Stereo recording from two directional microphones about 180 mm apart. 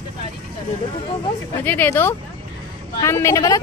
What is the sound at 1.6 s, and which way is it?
A woman's voice, 10° left (ahead or behind).